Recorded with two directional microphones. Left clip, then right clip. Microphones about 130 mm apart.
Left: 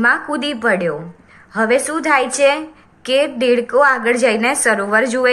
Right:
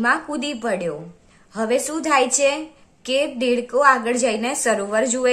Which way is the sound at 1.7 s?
55° right (ahead or behind).